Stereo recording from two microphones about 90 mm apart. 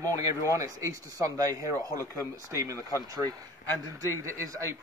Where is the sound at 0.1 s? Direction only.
40° right (ahead or behind).